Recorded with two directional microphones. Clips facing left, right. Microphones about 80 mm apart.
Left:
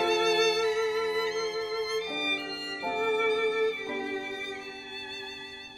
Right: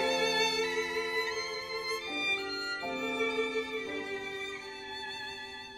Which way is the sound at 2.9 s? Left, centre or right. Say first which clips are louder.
Left 8 dB; left.